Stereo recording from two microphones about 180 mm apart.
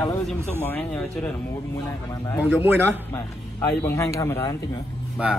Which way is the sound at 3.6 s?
15° left (ahead or behind).